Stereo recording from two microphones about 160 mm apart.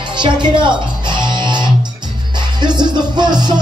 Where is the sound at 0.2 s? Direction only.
30° right (ahead or behind).